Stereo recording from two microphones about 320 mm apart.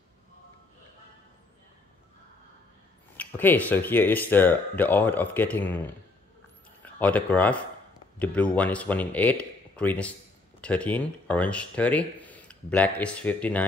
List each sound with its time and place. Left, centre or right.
3.2 s speech: centre
6.8 s speech: centre